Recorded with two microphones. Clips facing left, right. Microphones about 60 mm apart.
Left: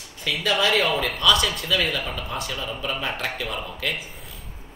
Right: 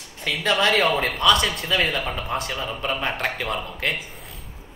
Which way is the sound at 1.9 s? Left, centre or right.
Right.